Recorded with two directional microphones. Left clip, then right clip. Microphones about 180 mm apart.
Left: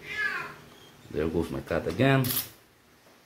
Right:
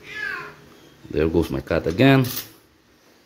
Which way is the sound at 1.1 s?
45° right (ahead or behind).